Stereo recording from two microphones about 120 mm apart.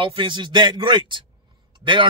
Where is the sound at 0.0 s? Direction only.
45° right (ahead or behind).